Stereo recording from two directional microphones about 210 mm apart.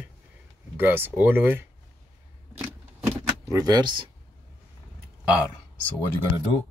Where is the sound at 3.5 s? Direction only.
20° right (ahead or behind).